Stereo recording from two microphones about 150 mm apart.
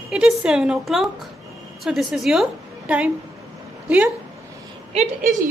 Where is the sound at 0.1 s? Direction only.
5° right (ahead or behind).